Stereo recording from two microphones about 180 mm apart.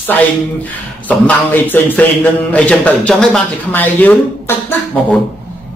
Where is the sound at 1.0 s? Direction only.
10° left (ahead or behind).